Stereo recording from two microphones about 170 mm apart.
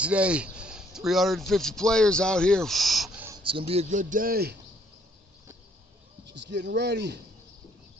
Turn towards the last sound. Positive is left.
turn(degrees=-80)